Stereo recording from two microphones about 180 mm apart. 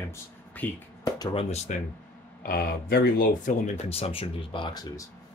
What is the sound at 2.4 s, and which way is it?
Speech, 55° left (ahead or behind).